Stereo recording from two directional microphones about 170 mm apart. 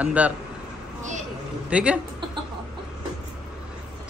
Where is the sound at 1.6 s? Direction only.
5° right (ahead or behind).